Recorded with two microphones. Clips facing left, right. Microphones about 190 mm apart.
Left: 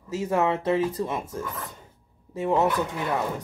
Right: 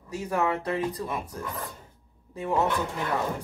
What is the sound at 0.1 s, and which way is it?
A woman's voice, 25° left (ahead or behind).